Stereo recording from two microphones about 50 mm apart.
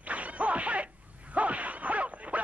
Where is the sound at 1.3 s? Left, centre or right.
Right.